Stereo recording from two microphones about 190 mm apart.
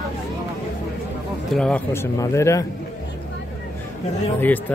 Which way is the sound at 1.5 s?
5° left (ahead or behind).